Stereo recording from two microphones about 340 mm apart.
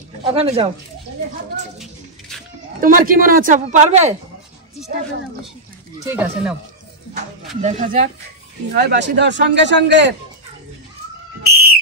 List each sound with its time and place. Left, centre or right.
0.2 s speech: centre
2.8 s speech: right
6.1 s speech: centre
7.6 s a man's voice: right
11.4 s whistle: right